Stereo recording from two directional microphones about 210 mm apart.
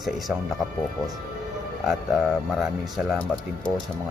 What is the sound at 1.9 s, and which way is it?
A man's voice, centre (ahead or behind).